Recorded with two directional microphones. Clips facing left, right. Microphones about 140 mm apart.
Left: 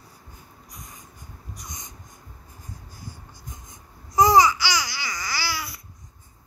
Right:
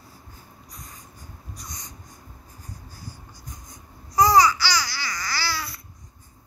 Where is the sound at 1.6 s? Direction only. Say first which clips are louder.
Even; 20° left (ahead or behind).